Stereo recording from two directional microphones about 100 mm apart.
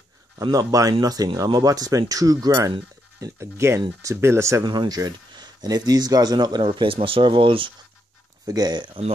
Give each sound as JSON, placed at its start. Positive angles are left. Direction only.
{"t": 0.4, "sound": "speech", "side_deg": -35}
{"t": 4.6, "sound": "speech", "side_deg": -45}
{"t": 6.6, "sound": "speech", "side_deg": -60}
{"t": 8.5, "sound": "speech", "side_deg": -40}